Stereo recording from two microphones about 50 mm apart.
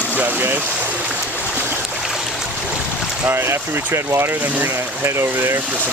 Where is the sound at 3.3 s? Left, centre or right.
Right.